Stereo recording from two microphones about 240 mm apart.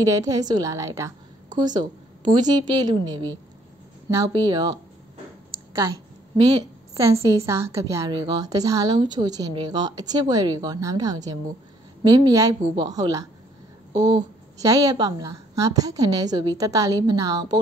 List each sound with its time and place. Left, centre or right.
0.0 s a woman's voice: centre
6.9 s a woman's voice: centre
13.9 s speech: right
14.6 s a woman's voice: centre